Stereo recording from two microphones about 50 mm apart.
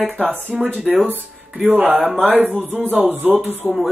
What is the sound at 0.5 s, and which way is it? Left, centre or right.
Speech, centre.